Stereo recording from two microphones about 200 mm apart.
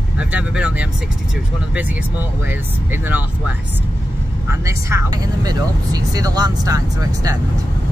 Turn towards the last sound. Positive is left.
turn(degrees=-20)  # may be behind; listen again after turning